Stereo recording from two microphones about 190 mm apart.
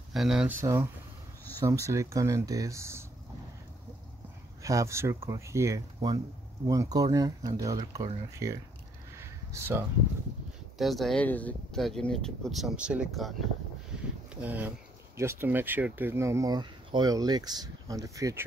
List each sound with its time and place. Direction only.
0.1 s speech: centre (ahead or behind)
4.6 s speech: 15° right (ahead or behind)
9.2 s a sound: 15° right (ahead or behind)
10.8 s speech: centre (ahead or behind)
14.3 s speech: 10° right (ahead or behind)